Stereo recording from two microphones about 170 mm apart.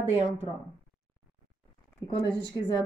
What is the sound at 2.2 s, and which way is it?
Speech, 25° left (ahead or behind).